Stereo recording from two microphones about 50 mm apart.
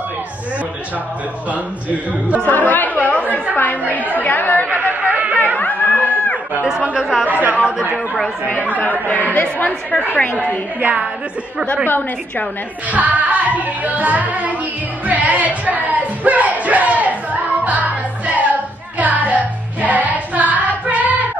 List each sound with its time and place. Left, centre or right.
1.5 s a man's voice: right
2.4 s speech: left
4.6 s chatter: right
5.0 s a sound: right
5.6 s music: left
7.0 s speech: centre
7.2 s music: right
9.0 s a woman's voice: left
10.8 s a man's voice: right
12.9 s music: right
15.0 s a sound: right